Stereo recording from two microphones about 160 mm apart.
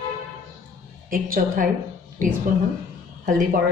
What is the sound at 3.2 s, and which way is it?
Speech, 60° right (ahead or behind).